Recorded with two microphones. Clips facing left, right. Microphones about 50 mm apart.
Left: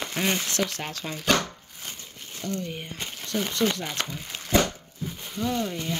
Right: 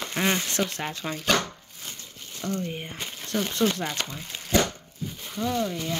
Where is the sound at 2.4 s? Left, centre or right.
Right.